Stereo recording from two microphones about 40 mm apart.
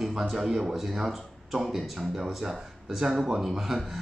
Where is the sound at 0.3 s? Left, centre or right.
Centre.